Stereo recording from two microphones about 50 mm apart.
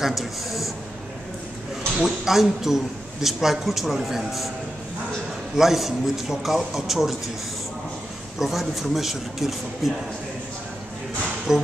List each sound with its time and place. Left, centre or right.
0.0 s a sound: centre
2.0 s a man's voice: centre
5.6 s a man's voice: centre
8.4 s a man's voice: centre
11.5 s speech: centre